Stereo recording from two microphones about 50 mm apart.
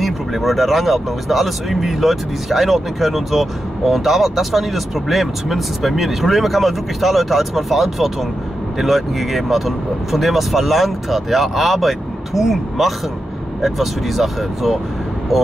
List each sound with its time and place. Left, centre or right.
0.0 s speech: centre